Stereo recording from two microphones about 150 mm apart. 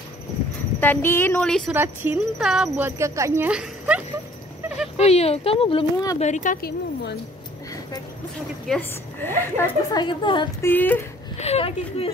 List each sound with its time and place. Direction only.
0.7 s speech: 15° left (ahead or behind)
1.7 s speech: 10° right (ahead or behind)
3.0 s speech: 20° right (ahead or behind)
4.9 s speech: 45° left (ahead or behind)
6.1 s speech: 50° left (ahead or behind); by 7.2 s 90° left
8.6 s speech: 5° left (ahead or behind)
9.6 s speech: 30° left (ahead or behind)
10.6 s speech: 10° left (ahead or behind)
11.3 s speech: 45° left (ahead or behind)